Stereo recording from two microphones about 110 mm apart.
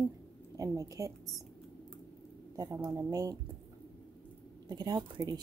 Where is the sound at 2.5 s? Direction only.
30° right (ahead or behind).